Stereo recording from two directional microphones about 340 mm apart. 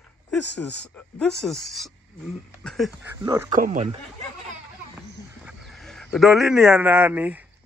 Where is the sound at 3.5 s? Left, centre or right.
Right.